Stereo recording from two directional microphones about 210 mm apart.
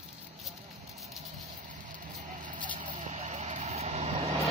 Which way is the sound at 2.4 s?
35° right (ahead or behind).